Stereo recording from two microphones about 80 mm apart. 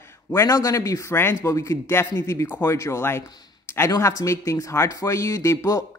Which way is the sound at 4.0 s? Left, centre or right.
Left.